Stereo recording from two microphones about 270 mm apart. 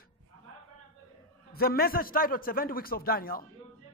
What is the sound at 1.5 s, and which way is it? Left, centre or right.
A man's voice, left.